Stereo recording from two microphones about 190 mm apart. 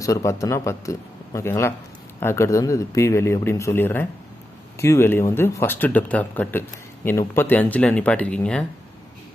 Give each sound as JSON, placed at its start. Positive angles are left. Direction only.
{"t": 0.0, "sound": "a man's voice", "side_deg": 15}